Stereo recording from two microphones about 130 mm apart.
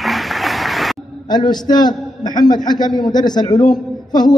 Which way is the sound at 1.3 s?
35° left (ahead or behind).